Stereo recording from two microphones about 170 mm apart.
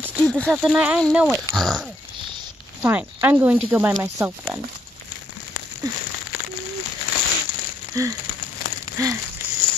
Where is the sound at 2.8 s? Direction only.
10° right (ahead or behind).